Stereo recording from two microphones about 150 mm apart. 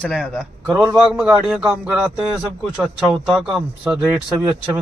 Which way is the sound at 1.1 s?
5° right (ahead or behind).